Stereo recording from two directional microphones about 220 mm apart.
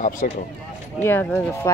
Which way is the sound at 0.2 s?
35° left (ahead or behind).